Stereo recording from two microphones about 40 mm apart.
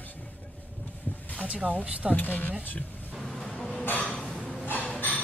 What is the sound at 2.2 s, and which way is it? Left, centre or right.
Speech, left.